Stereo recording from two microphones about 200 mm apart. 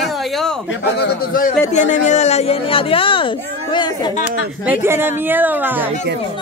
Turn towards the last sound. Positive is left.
turn(degrees=-10)  # may be behind; listen again after turning